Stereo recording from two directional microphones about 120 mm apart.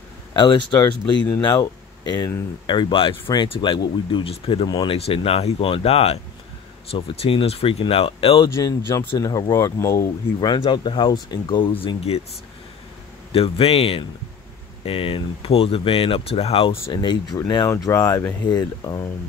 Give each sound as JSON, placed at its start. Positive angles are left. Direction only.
{"t": 0.3, "sound": "speech", "side_deg": 40}
{"t": 4.6, "sound": "speech", "side_deg": 35}
{"t": 4.9, "sound": "speech", "side_deg": 55}
{"t": 8.8, "sound": "speech", "side_deg": 35}
{"t": 10.5, "sound": "speech", "side_deg": 40}
{"t": 11.8, "sound": "speech", "side_deg": 50}
{"t": 13.3, "sound": "speech", "side_deg": 50}
{"t": 16.9, "sound": "speech", "side_deg": 40}
{"t": 17.6, "sound": "speech", "side_deg": 25}